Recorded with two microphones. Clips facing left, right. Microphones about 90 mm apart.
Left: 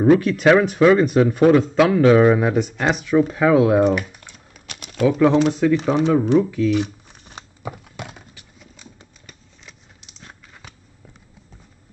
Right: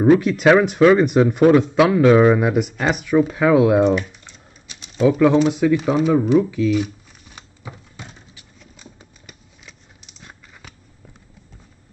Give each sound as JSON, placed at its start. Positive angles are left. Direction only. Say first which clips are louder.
{"t": 0.0, "sound": "speech", "louder": "right 1 dB", "side_deg": -15}
{"t": 2.0, "sound": "speech", "louder": "even", "side_deg": 0}
{"t": 4.6, "sound": "typewriter", "louder": "even", "side_deg": 60}
{"t": 5.2, "sound": "speech", "louder": "left 1 dB", "side_deg": 0}
{"t": 7.1, "sound": "a sound", "louder": "left 4 dB", "side_deg": 30}
{"t": 7.6, "sound": "typing", "louder": "left 6 dB", "side_deg": 65}
{"t": 9.2, "sound": "a sound", "louder": "right 1 dB", "side_deg": -5}